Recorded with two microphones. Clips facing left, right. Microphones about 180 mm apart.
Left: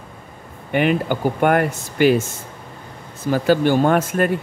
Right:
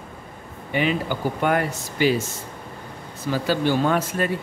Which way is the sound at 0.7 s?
55° left (ahead or behind).